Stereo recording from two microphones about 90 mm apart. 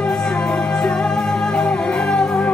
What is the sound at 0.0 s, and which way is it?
Music, 10° left (ahead or behind).